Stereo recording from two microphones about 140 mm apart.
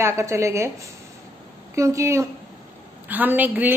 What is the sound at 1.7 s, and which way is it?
Speech, 20° right (ahead or behind).